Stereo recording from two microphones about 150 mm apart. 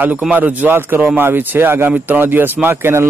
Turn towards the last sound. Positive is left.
turn(degrees=-15)  # may be behind; listen again after turning